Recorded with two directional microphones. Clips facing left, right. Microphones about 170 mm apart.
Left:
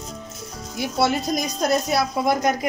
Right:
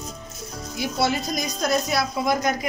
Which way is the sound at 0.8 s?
60° left (ahead or behind).